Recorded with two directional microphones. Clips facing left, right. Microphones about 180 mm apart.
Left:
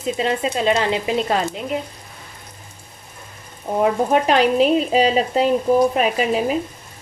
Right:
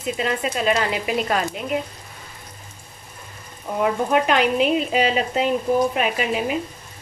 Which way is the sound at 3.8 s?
35° left (ahead or behind).